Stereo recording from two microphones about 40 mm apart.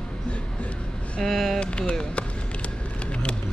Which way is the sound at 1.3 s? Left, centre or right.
Centre.